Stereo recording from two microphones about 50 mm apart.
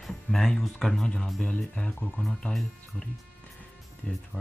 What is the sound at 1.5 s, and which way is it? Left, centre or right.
Speech, left.